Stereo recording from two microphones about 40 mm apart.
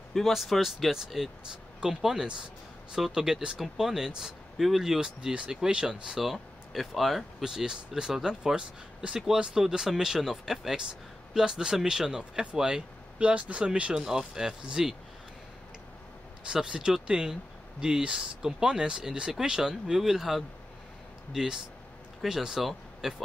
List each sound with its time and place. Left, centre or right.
0.1 s speech: centre
7.4 s speech: centre
13.2 s speech: right
13.9 s speech: centre
16.6 s speech: centre